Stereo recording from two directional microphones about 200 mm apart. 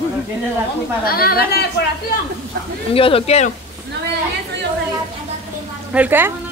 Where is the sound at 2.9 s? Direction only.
30° left (ahead or behind).